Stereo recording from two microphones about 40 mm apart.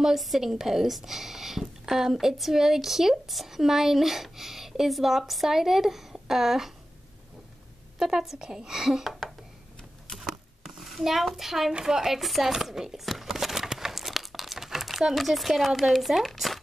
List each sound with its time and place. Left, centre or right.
0.0 s speech: centre
8.0 s speech: centre
10.2 s a sound: centre
10.8 s a child's voice: centre
12.6 s crumpling: centre
15.1 s speech: centre